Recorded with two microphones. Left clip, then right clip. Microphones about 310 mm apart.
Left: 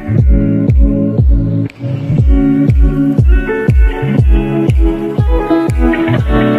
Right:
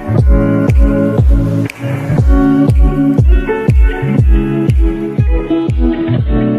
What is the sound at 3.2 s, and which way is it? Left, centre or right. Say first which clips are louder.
Music: even; centre.